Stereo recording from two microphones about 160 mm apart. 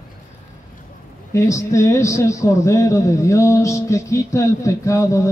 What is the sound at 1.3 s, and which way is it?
A man's voice, 20° left (ahead or behind).